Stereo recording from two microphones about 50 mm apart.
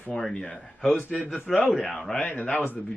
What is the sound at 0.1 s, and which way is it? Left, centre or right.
A man's voice, centre.